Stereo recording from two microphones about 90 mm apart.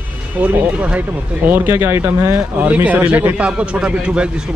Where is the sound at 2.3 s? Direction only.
15° right (ahead or behind).